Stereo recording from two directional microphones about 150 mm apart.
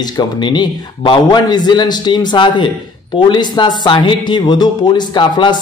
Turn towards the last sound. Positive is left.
turn(degrees=30)  # may be behind; listen again after turning